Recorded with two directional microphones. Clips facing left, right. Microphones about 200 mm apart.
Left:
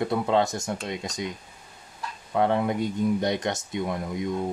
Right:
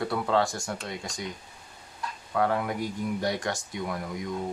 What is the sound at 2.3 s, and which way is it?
Speech, 25° left (ahead or behind).